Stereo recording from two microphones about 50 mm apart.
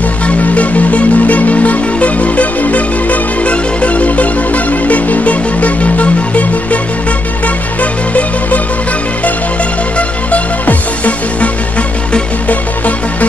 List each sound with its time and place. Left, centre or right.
0.3 s music: left
9.9 s music: left